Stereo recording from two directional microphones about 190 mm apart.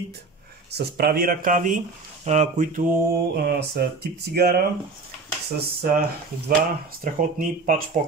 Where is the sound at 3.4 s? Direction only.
55° right (ahead or behind).